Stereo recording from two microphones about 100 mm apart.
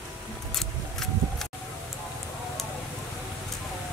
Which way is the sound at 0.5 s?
5° left (ahead or behind).